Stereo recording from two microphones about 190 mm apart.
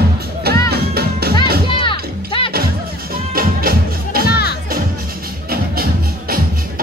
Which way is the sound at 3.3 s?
50° right (ahead or behind).